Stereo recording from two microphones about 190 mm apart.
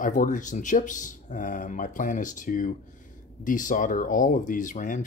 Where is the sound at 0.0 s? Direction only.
45° left (ahead or behind).